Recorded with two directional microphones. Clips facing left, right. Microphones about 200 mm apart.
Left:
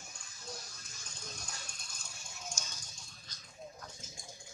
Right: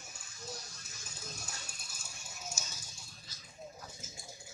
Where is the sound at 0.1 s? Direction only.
5° right (ahead or behind).